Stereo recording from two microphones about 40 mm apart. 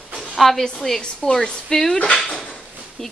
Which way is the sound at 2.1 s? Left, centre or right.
Centre.